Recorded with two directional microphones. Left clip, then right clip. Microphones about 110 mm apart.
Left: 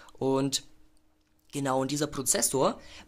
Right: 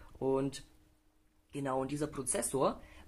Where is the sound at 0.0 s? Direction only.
40° left (ahead or behind).